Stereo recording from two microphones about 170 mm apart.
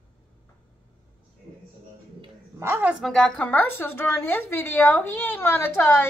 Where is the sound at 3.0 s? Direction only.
5° left (ahead or behind).